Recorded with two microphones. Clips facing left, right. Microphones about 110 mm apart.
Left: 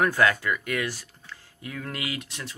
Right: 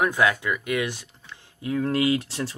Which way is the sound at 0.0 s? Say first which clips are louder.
Even; 15° right (ahead or behind).